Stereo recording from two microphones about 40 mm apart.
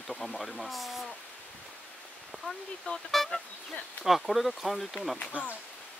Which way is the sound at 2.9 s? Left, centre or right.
Left.